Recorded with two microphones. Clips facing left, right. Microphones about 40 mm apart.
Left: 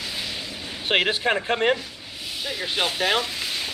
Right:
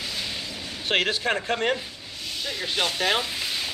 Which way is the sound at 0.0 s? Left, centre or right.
Centre.